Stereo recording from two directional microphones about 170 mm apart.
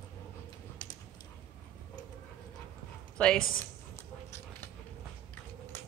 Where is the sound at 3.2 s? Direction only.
5° left (ahead or behind).